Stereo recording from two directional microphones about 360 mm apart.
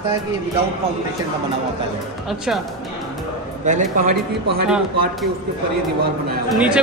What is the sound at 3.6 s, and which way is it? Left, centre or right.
Speech, right.